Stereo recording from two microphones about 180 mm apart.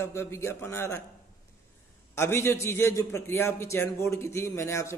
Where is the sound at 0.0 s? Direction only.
15° left (ahead or behind).